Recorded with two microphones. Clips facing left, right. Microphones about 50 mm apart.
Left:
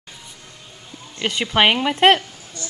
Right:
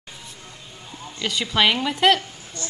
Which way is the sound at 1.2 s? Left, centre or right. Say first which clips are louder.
Left 3 dB; left.